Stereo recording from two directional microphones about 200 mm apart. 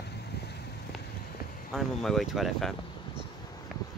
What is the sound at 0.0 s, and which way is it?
Vehicle, 55° left (ahead or behind).